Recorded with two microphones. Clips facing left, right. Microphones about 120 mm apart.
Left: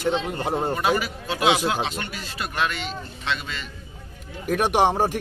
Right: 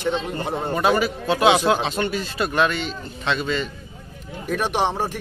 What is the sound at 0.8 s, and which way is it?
Speech, 30° right (ahead or behind).